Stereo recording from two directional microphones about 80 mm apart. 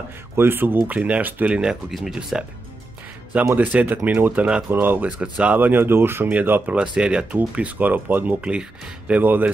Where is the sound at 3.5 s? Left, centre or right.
Centre.